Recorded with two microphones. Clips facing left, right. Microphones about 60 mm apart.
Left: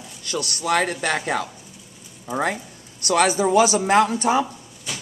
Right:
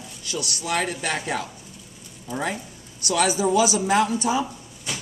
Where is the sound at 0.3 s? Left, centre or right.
Left.